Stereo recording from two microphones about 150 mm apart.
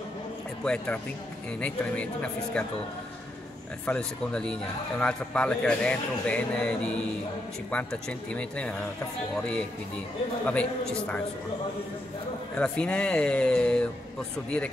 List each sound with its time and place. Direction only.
1.6 s a man's voice: 10° left (ahead or behind)
3.8 s a man's voice: 5° left (ahead or behind)
10.4 s a man's voice: 10° left (ahead or behind)
12.5 s a man's voice: 5° left (ahead or behind)